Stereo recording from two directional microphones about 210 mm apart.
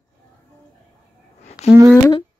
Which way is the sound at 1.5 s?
30° left (ahead or behind).